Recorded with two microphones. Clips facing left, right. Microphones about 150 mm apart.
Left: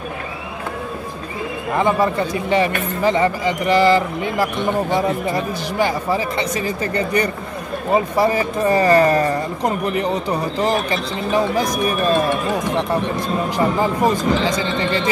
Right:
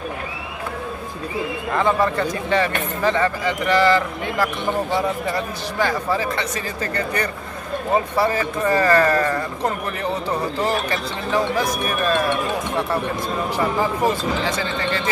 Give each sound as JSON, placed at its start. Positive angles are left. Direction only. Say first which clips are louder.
{"t": 1.7, "sound": "speech", "louder": "left 2 dB", "side_deg": 15}
{"t": 14.0, "sound": "speech", "louder": "left 4 dB", "side_deg": 15}